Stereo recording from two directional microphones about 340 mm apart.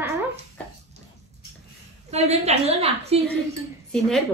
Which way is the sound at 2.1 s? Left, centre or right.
Centre.